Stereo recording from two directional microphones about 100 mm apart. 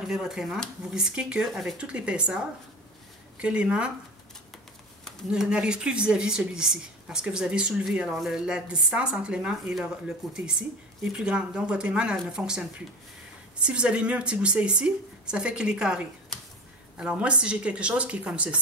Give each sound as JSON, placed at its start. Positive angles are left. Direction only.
{"t": 0.0, "sound": "a woman's voice", "side_deg": -5}
{"t": 5.3, "sound": "a woman's voice", "side_deg": -10}